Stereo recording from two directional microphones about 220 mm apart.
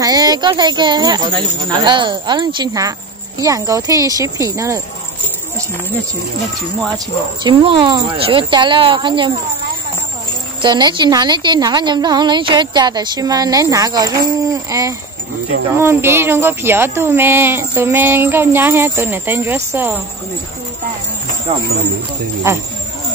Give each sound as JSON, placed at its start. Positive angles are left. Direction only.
{"t": 0.0, "sound": "a woman's voice", "side_deg": -15}
{"t": 7.4, "sound": "a woman's voice", "side_deg": -20}
{"t": 10.6, "sound": "a woman's voice", "side_deg": -20}